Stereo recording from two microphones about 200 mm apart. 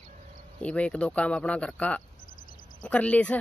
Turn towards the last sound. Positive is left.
turn(degrees=5)  # may be behind; listen again after turning